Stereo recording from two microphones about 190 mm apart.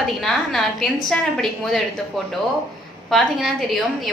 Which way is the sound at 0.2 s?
Centre (ahead or behind).